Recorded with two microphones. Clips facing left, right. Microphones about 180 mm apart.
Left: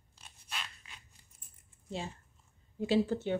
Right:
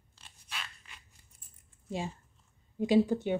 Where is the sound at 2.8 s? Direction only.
15° right (ahead or behind).